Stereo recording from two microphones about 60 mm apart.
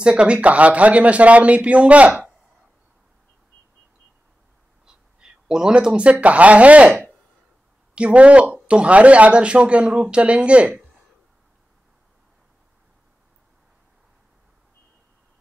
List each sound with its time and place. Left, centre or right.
0.0 s speech: centre
5.5 s speech: centre